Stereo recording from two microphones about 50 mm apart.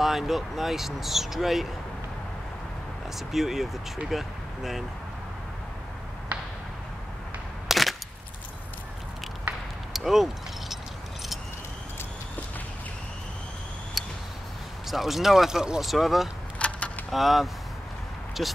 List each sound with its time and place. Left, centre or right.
0.0 s speech: centre
3.2 s speech: centre
7.6 s a sound: centre
9.9 s a sound: centre
14.0 s a sound: centre
14.9 s speech: centre
15.8 s speech: centre
16.5 s keys jangling: left
17.1 s speech: centre